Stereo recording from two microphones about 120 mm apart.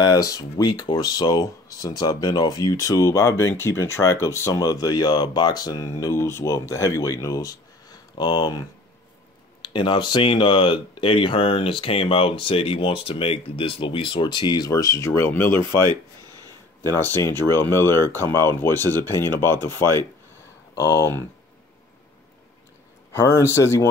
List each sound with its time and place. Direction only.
0.0 s speech: 30° left (ahead or behind)
16.8 s speech: 20° left (ahead or behind)
20.7 s speech: 25° left (ahead or behind)
23.1 s speech: 20° left (ahead or behind)